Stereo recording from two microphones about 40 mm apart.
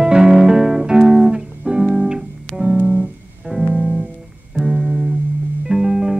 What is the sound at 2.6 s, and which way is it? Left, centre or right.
Music, right.